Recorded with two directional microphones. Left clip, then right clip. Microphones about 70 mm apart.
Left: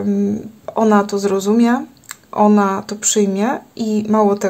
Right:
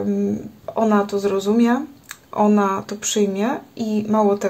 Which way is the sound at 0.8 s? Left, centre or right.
Left.